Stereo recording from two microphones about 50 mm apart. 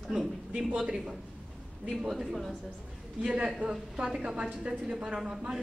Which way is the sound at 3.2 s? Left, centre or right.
Centre.